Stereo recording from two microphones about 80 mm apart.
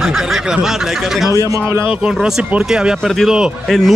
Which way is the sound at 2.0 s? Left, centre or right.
Centre.